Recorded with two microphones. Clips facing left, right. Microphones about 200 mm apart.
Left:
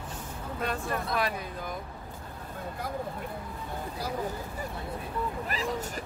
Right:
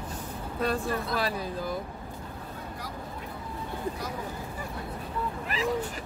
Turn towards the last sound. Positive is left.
turn(degrees=40)  # may be behind; listen again after turning